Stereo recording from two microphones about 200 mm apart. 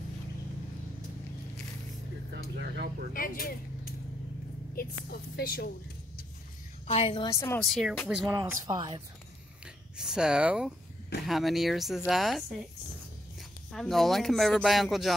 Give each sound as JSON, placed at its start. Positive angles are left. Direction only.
{"t": 2.3, "sound": "speech", "side_deg": -55}
{"t": 3.1, "sound": "a woman's voice", "side_deg": 45}
{"t": 4.7, "sound": "a woman's voice", "side_deg": 50}
{"t": 6.9, "sound": "a woman's voice", "side_deg": 30}
{"t": 7.6, "sound": "speech", "side_deg": 0}
{"t": 8.4, "sound": "speech", "side_deg": -20}
{"t": 9.9, "sound": "speech", "side_deg": -5}
{"t": 13.7, "sound": "speech", "side_deg": 0}